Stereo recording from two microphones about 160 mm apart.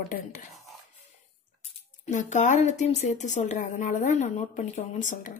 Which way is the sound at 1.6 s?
50° left (ahead or behind).